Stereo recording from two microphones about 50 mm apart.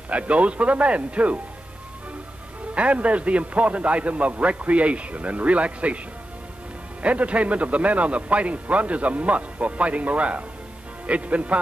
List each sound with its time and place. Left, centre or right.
0.1 s a man's voice: right
2.7 s a man's voice: right
7.0 s a man's voice: right